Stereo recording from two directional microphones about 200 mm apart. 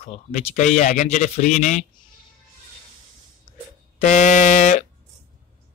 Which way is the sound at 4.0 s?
35° left (ahead or behind).